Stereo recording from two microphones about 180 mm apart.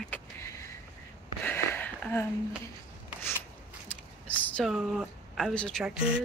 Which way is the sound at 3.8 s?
10° left (ahead or behind).